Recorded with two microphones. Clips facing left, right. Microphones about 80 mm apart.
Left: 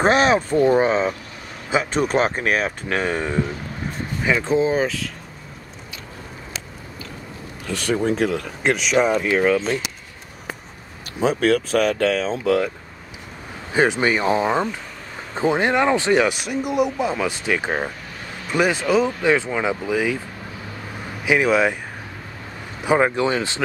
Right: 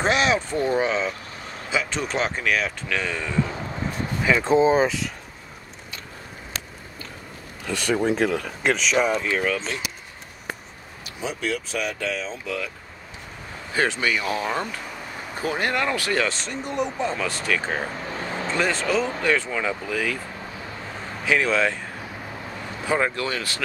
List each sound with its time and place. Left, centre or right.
0.0 s speech: left
4.2 s speech: centre
4.5 s speech: right
7.6 s speech: centre
8.9 s speech: left
11.1 s speech: left
13.7 s speech: centre
18.1 s vehicle: right
18.5 s speech: centre
21.3 s speech: centre
22.8 s speech: centre